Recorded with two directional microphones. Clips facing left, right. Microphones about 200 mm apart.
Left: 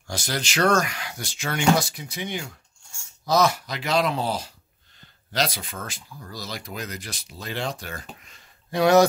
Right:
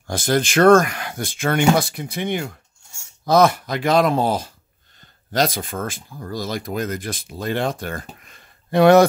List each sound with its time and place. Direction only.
0.0 s speech: 50° right (ahead or behind)